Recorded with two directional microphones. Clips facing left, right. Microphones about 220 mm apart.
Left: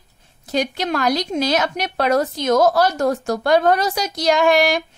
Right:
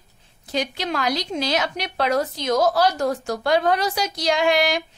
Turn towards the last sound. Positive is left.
turn(degrees=45)  # may be behind; listen again after turning